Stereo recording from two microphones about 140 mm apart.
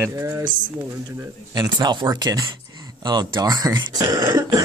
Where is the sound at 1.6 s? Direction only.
30° right (ahead or behind).